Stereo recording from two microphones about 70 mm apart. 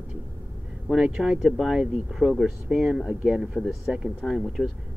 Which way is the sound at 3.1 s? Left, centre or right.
Centre.